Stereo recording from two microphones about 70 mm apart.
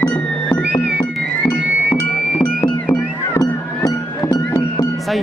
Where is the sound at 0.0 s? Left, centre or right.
Centre.